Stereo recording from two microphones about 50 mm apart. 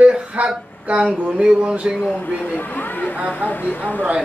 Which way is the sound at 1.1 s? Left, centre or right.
Right.